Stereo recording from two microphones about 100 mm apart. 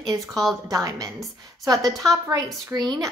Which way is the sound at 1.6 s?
35° right (ahead or behind).